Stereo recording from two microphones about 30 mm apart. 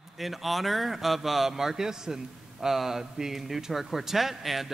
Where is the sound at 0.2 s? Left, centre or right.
Centre.